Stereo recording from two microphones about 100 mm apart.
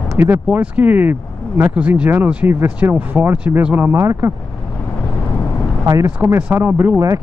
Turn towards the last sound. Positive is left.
turn(degrees=-15)  # may be behind; listen again after turning